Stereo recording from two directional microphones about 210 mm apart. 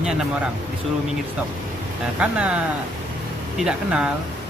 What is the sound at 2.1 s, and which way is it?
Speech, 5° right (ahead or behind).